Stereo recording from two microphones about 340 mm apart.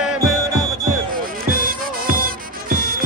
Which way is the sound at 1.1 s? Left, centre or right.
Right.